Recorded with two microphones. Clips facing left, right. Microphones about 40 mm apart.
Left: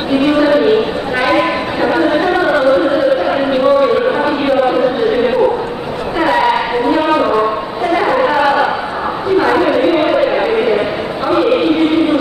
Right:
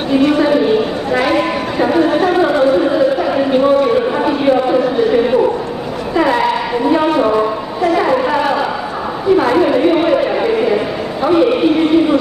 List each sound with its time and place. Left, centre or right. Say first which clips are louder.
0.1 s a woman's voice: left 1 dB; centre
2.5 s a man's voice: left 1 dB; left
6.1 s a sound: left 1 dB; centre
7.1 s a sound: left 1 dB; left
9.4 s chatter: left 2 dB; centre
11.2 s a woman's voice: right 1 dB; centre